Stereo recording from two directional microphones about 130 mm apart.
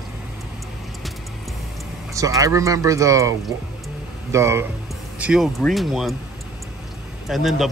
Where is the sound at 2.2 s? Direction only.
25° right (ahead or behind).